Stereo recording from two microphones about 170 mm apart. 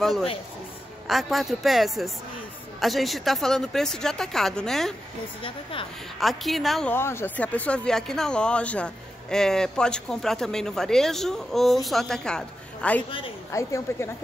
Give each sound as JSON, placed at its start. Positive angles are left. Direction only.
{"t": 0.0, "sound": "speech", "side_deg": 0}
{"t": 5.4, "sound": "speech", "side_deg": 30}
{"t": 6.1, "sound": "speech", "side_deg": 0}
{"t": 6.9, "sound": "speech", "side_deg": 15}
{"t": 13.5, "sound": "a woman's voice", "side_deg": 20}